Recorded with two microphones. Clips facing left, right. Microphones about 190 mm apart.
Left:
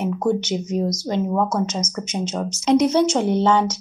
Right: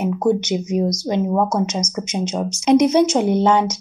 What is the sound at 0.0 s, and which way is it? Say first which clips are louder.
Speech: right 3 dB; 10° right (ahead or behind).